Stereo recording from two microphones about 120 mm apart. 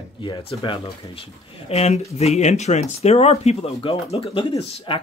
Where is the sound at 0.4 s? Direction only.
50° left (ahead or behind).